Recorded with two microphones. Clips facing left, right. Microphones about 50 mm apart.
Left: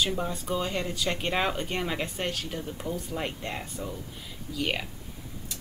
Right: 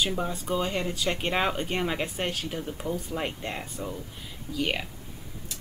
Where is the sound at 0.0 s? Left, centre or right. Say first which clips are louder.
Even; centre.